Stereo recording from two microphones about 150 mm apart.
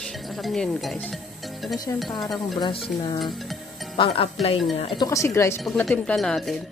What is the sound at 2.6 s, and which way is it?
Speech, 30° left (ahead or behind).